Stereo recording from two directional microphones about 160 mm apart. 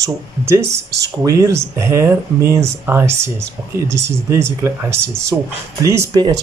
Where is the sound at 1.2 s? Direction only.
20° right (ahead or behind).